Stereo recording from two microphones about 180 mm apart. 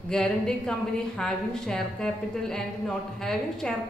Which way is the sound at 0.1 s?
5° left (ahead or behind).